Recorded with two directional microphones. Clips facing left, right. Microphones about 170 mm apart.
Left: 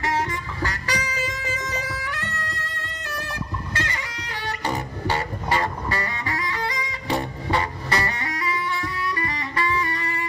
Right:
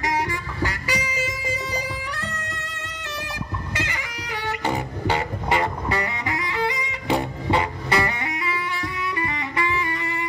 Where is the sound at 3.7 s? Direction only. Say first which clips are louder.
Even; 15° right (ahead or behind).